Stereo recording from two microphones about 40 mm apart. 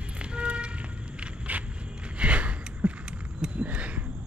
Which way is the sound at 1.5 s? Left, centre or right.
Right.